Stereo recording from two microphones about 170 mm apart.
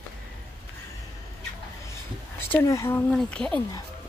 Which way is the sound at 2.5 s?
20° left (ahead or behind).